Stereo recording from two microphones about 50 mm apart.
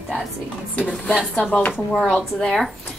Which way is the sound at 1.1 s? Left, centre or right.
Centre.